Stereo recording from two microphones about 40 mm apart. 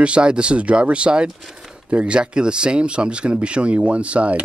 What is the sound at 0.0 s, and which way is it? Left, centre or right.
Speech, right.